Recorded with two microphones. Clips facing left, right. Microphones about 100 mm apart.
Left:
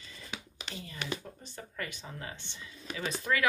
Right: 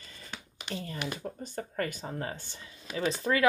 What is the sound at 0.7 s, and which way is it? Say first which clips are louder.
Speech: right 2 dB; 45° right (ahead or behind).